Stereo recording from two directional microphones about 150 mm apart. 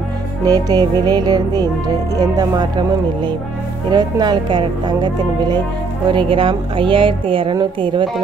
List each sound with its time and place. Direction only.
0.5 s speech: 25° right (ahead or behind)
3.9 s a woman's voice: 30° right (ahead or behind)